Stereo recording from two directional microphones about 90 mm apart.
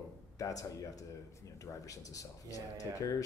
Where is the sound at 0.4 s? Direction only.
40° left (ahead or behind).